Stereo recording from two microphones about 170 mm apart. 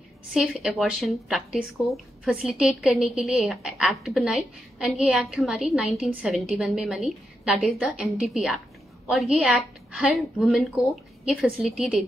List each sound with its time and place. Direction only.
0.3 s a woman's voice: 5° right (ahead or behind)